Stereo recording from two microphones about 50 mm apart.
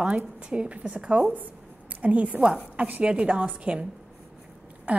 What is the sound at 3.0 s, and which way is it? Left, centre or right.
Speech, right.